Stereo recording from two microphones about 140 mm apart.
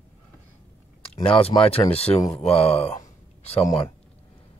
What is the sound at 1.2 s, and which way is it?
Speech, 40° left (ahead or behind).